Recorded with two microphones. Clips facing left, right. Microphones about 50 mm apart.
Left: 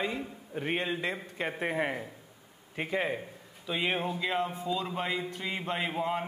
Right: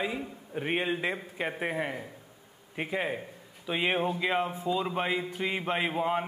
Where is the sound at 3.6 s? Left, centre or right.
Centre.